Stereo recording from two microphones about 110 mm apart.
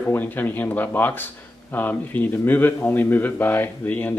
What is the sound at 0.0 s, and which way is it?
Speech, 20° left (ahead or behind).